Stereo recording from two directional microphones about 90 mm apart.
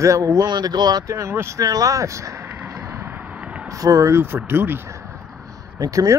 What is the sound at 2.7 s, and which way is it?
Vehicle, 35° right (ahead or behind).